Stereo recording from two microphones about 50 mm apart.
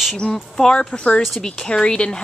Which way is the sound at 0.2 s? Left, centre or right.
Centre.